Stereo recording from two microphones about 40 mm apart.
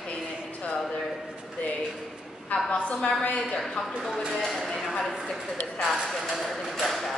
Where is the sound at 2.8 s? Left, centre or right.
Left.